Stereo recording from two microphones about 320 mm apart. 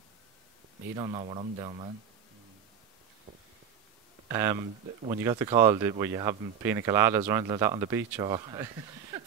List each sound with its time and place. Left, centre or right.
0.9 s speech: centre
4.3 s speech: centre